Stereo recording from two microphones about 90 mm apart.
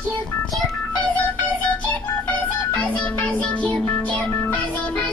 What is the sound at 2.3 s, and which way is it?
Music, 15° left (ahead or behind).